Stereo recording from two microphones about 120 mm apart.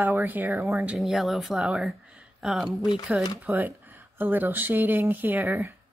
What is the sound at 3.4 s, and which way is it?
Speech, 15° right (ahead or behind).